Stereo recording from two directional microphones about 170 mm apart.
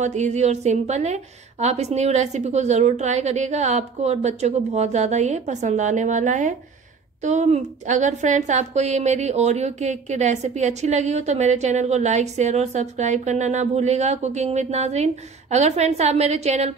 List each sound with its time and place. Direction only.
0.0 s a woman's voice: 45° right (ahead or behind)